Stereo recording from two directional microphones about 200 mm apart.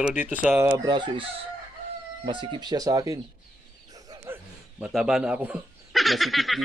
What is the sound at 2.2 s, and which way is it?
Speech, 25° right (ahead or behind).